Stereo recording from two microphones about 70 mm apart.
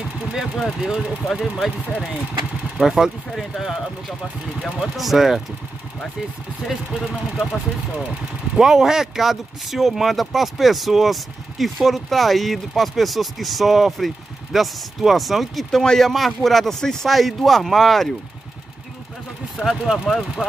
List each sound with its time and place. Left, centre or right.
0.3 s speech: centre
4.9 s speech: centre
6.7 s speech: centre
8.5 s speech: centre
19.5 s speech: centre